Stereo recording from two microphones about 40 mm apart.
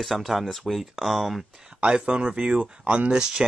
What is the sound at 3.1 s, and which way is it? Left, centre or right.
Speech, centre.